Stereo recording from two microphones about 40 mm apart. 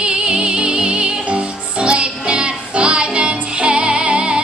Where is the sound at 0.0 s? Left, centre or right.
Right.